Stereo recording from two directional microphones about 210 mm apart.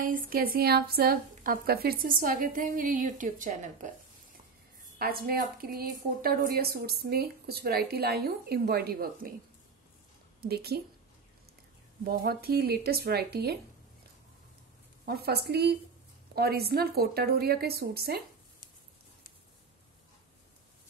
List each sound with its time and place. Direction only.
0.0 s speech: 45° right (ahead or behind)
4.9 s a woman's voice: 45° right (ahead or behind)
10.4 s a woman's voice: 50° right (ahead or behind)
12.0 s a woman's voice: 45° right (ahead or behind)
15.0 s a woman's voice: 50° right (ahead or behind)